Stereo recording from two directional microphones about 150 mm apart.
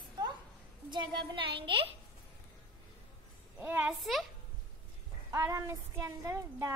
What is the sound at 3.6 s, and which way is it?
Speech, 10° right (ahead or behind).